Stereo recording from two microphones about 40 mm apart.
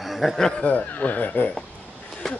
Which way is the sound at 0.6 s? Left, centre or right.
Left.